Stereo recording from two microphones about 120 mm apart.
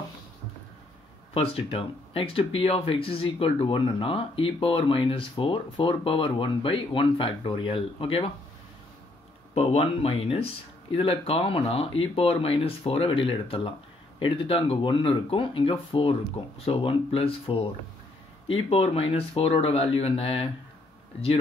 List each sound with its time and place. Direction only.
1.3 s speech: 55° left (ahead or behind)
9.5 s speech: 60° left (ahead or behind)
18.7 s speech: 55° left (ahead or behind)